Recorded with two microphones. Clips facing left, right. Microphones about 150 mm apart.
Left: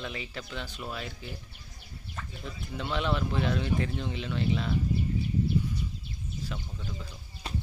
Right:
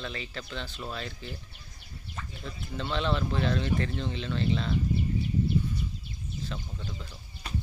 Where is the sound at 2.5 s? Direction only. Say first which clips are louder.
Right 1 dB; 10° left (ahead or behind).